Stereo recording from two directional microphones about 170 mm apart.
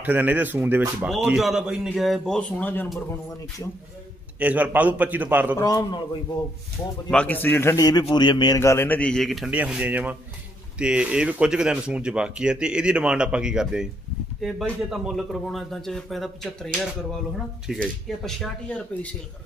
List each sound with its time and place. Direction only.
0.0 s a man's voice: 10° right (ahead or behind); by 3.2 s 10° left (ahead or behind)
4.4 s a man's voice: 10° right (ahead or behind)
5.6 s a man's voice: 20° left (ahead or behind)
7.1 s a man's voice: 10° left (ahead or behind)